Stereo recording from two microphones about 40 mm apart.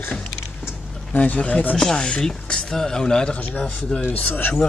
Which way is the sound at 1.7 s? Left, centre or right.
Centre.